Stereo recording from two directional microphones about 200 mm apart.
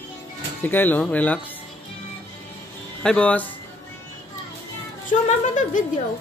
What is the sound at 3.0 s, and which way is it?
Speech, 5° left (ahead or behind).